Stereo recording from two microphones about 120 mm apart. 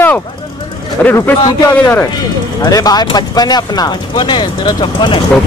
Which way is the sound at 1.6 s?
20° left (ahead or behind).